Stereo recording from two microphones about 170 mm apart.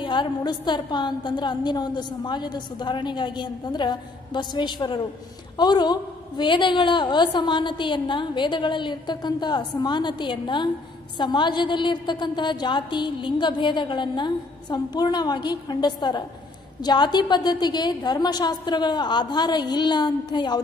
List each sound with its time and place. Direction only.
0.0 s a woman's voice: 30° left (ahead or behind)